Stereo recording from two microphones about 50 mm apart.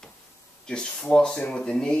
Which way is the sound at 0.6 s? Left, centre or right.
Centre.